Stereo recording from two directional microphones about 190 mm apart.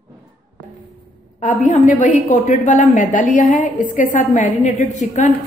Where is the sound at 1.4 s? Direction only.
40° left (ahead or behind).